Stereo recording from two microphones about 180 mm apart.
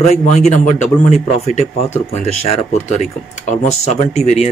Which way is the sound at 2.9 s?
40° left (ahead or behind).